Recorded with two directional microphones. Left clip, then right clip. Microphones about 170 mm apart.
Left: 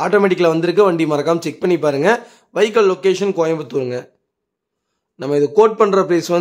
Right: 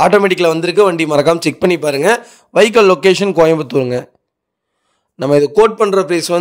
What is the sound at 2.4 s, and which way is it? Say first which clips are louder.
A man's voice: right 5 dB; 35° right (ahead or behind).